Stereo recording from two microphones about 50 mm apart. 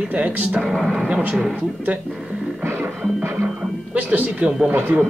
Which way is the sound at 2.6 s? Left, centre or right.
Right.